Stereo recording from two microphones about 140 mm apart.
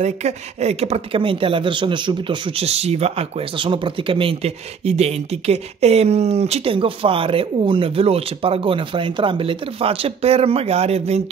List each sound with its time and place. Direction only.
0.0 s speech: 50° right (ahead or behind)